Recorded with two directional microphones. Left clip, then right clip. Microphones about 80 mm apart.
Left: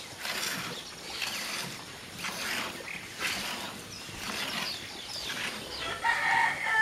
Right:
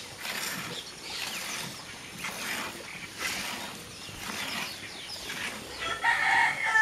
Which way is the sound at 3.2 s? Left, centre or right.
Centre.